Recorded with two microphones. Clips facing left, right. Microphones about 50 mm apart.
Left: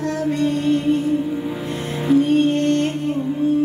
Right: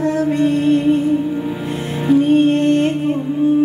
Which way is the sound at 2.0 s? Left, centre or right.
Centre.